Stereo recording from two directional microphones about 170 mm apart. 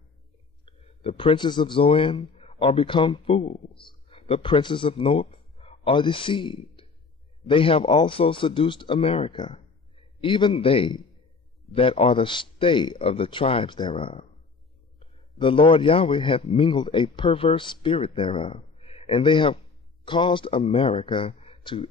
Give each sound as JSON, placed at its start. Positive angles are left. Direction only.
{"t": 0.7, "sound": "a man's voice", "side_deg": 30}